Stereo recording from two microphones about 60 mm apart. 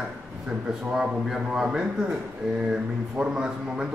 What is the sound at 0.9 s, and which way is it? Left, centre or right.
A man's voice, centre.